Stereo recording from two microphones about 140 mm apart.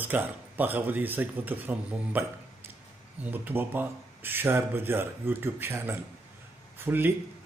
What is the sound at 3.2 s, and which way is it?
A man's voice, 10° right (ahead or behind).